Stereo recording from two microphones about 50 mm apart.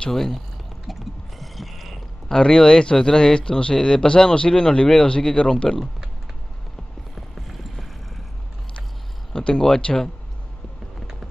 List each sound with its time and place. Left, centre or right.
0.1 s speech: centre
0.8 s a sound: centre
2.2 s speech: centre
7.2 s clip-clop: centre
9.3 s speech: centre